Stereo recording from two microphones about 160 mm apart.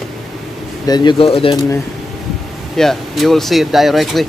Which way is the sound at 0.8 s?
25° left (ahead or behind).